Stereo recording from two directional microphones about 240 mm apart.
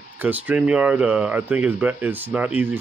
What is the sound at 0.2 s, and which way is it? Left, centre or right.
Speech, centre.